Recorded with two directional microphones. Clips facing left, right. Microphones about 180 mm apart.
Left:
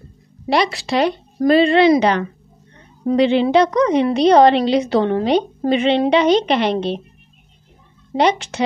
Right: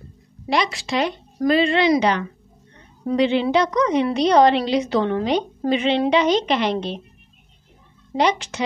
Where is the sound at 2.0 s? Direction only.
55° left (ahead or behind).